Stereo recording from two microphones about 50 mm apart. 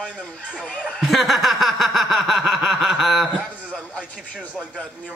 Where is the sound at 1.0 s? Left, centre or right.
Centre.